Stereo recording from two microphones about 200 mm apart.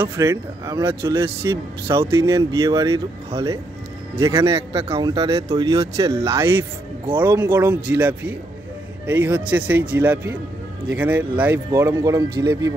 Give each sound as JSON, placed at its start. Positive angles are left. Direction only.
{"t": 0.2, "sound": "speech", "side_deg": -15}
{"t": 4.2, "sound": "speech", "side_deg": -15}
{"t": 4.5, "sound": "a man's voice", "side_deg": -30}